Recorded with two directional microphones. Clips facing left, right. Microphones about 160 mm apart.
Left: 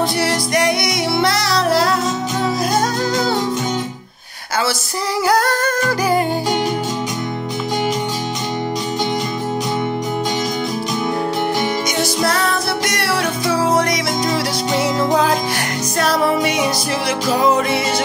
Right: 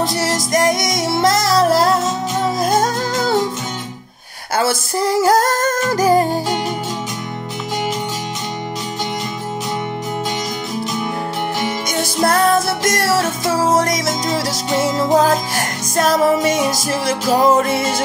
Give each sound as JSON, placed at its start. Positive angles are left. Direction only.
{"t": 0.0, "sound": "music", "side_deg": -40}
{"t": 4.6, "sound": "music", "side_deg": -50}
{"t": 12.0, "sound": "music", "side_deg": -50}
{"t": 14.8, "sound": "music", "side_deg": -5}
{"t": 16.0, "sound": "music", "side_deg": -45}